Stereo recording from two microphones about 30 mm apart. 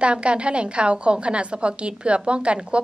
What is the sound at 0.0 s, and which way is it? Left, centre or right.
A woman's voice, right.